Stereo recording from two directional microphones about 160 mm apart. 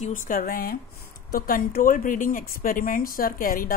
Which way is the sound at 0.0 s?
55° left (ahead or behind).